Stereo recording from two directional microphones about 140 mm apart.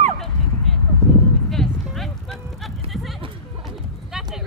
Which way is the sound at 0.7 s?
Centre (ahead or behind).